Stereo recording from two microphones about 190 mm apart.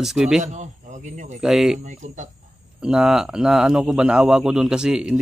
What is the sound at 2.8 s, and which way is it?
A man's voice, 5° right (ahead or behind).